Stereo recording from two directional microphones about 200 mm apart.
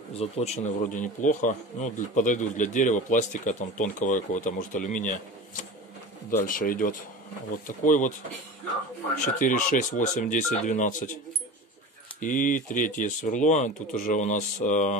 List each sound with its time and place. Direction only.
0.2 s speech: 35° left (ahead or behind)
9.2 s speech: 40° left (ahead or behind)
12.2 s speech: 40° left (ahead or behind)